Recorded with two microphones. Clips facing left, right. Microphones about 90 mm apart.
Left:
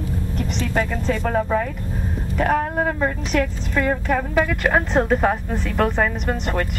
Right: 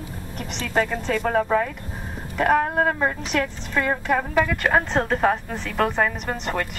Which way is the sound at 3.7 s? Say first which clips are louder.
Left 1 dB; 5° right (ahead or behind).